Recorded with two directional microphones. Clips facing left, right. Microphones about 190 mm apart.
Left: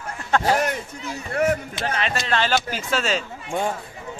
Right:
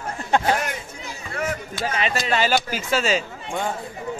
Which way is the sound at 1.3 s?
55° left (ahead or behind).